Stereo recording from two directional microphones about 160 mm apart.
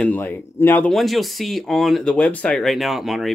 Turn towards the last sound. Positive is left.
turn(degrees=0)  # may be behind; listen again after turning